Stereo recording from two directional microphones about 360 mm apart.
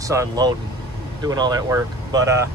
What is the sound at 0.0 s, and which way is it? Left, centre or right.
Speech, centre.